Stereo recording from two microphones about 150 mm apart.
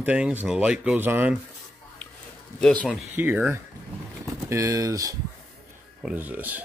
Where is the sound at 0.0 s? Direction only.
10° right (ahead or behind).